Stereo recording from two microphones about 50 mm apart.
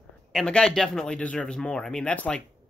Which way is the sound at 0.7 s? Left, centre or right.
Centre.